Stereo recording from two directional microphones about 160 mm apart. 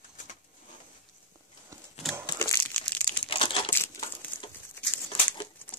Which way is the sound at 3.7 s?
15° left (ahead or behind).